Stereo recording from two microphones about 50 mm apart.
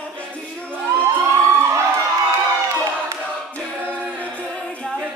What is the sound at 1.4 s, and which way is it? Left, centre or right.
Crowd, right.